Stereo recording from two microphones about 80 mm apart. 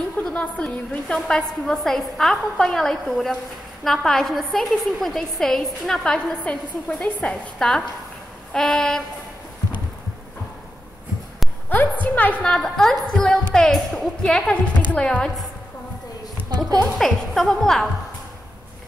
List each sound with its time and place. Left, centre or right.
0.2 s a woman's voice: centre
11.7 s a woman's voice: left
16.4 s a sound: right
17.0 s a woman's voice: centre